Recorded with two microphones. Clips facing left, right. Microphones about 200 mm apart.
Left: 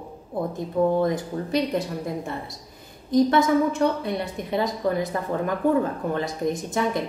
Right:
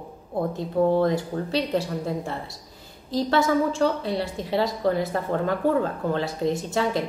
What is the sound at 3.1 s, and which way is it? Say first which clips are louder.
A woman's voice: left 3 dB; 20° left (ahead or behind).